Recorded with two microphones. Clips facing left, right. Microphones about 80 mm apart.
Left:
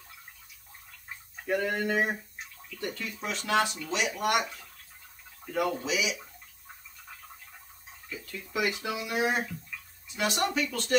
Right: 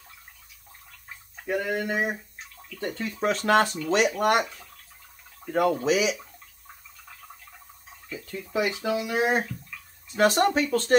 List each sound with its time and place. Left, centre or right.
1.4 s speech: centre
2.8 s speech: right
5.5 s speech: right
8.1 s speech: right